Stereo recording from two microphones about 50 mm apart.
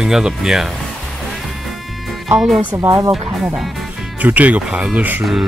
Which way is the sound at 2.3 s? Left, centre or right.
Centre.